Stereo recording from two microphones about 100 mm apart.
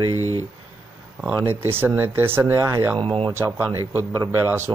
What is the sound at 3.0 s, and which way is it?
Speech, 60° right (ahead or behind).